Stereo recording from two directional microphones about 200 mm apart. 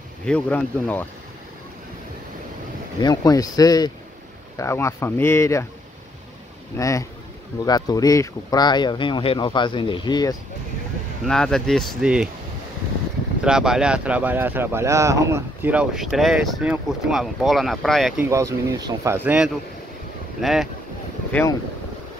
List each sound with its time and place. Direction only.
0.2 s speech: 5° left (ahead or behind)
3.0 s speech: 20° left (ahead or behind)
6.8 s speech: 15° left (ahead or behind)
11.2 s speech: 5° left (ahead or behind)
13.4 s speech: 5° right (ahead or behind)
18.2 s speech: 15° right (ahead or behind); by 21.5 s 5° left (ahead or behind)